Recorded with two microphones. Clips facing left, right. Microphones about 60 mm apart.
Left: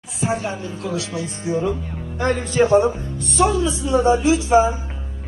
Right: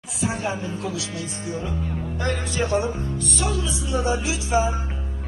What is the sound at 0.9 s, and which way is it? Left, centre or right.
Speech, left.